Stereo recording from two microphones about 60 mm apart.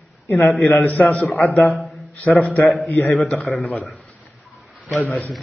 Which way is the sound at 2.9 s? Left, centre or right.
Left.